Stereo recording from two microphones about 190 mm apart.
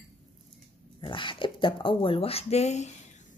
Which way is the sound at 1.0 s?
25° left (ahead or behind).